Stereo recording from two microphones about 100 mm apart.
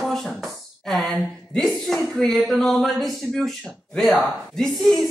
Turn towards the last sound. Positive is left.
turn(degrees=0)  # may be behind; listen again after turning